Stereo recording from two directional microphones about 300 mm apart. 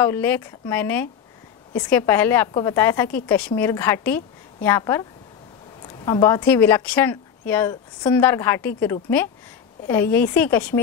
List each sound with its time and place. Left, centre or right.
0.0 s a woman's voice: centre
6.0 s a woman's voice: centre